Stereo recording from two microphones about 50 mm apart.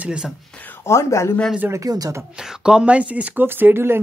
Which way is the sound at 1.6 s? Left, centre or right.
Right.